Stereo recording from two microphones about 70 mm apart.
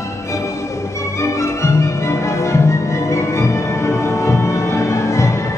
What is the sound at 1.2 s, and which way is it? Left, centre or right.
Music, left.